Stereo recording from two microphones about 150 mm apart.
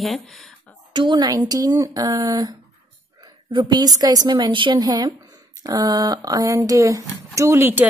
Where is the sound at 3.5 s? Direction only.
30° right (ahead or behind).